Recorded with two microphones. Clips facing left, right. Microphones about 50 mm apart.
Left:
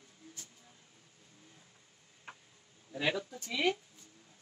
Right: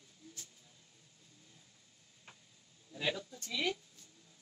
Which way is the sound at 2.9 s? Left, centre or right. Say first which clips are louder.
Left 4 dB; left.